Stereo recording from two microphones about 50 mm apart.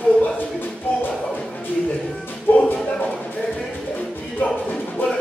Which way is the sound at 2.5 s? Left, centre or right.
Left.